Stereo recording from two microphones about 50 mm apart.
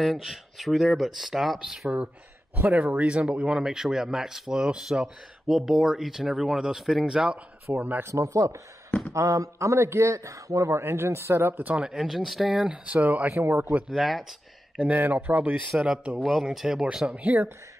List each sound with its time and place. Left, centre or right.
0.2 s speech: centre
2.5 s speech: right
7.7 s speech: right
8.1 s a man's voice: right
11.7 s speech: centre
12.8 s speech: right
13.3 s speech: right
13.8 s speech: centre
15.0 s speech: right
15.9 s speech: right
16.2 s speech: centre
17.1 s speech: right